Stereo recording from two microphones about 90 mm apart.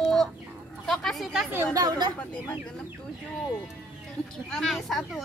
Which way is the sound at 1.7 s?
50° right (ahead or behind).